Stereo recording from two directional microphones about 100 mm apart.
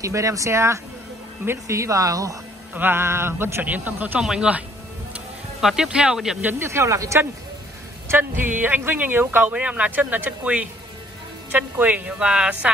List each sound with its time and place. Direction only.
0.0 s speech: 30° right (ahead or behind)
2.7 s a man's voice: 20° right (ahead or behind)
5.1 s vehicle: 5° right (ahead or behind)
6.4 s a man's voice: 25° right (ahead or behind)